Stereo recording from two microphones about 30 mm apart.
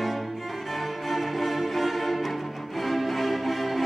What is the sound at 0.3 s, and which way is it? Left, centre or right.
Music, centre.